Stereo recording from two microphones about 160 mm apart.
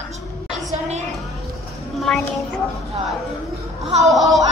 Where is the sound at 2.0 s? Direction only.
Centre (ahead or behind).